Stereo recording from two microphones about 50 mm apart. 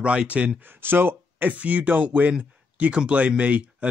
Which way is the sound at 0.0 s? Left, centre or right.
Right.